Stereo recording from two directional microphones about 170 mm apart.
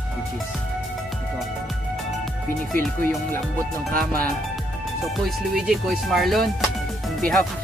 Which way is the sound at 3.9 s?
60° right (ahead or behind).